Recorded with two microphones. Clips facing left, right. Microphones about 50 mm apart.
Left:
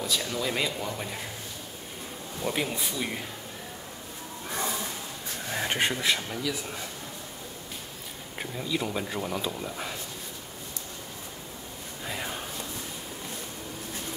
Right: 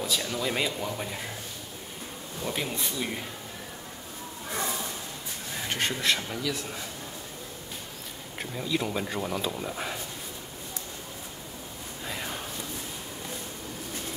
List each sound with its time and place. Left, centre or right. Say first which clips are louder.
0.0 s speech: even; centre
2.4 s speech: left 2 dB; centre
5.5 s speech: left 4 dB; left
5.8 s speech: left 1 dB; centre
6.0 s speech: even; centre
8.4 s speech: right 1 dB; centre
12.1 s a sound: left 1 dB; centre